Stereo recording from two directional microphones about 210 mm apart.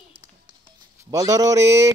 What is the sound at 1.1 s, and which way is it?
Speech, 15° right (ahead or behind).